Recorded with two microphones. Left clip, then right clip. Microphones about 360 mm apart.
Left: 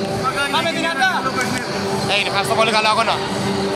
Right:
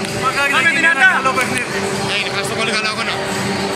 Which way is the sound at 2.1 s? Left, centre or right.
Centre.